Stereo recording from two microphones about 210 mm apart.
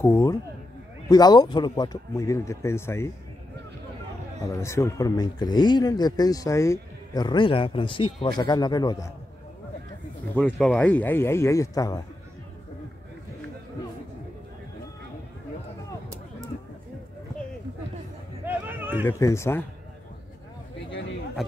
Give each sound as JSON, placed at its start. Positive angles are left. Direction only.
{"t": 0.0, "sound": "speech", "side_deg": 15}
{"t": 4.4, "sound": "speech", "side_deg": 15}
{"t": 10.3, "sound": "speech", "side_deg": 5}
{"t": 18.4, "sound": "a sound", "side_deg": -10}
{"t": 19.0, "sound": "speech", "side_deg": 15}